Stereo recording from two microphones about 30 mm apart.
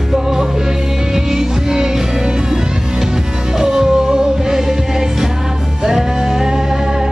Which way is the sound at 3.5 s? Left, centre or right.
Right.